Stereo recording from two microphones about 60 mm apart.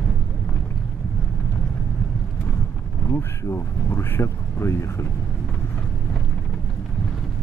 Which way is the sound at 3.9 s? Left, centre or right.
Left.